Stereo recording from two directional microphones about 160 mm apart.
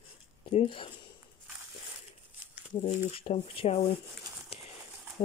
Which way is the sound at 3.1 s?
35° left (ahead or behind).